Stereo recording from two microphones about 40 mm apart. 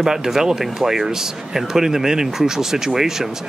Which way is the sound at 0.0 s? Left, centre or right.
Centre.